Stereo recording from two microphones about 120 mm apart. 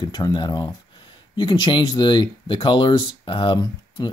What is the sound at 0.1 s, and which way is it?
Speech, 40° left (ahead or behind).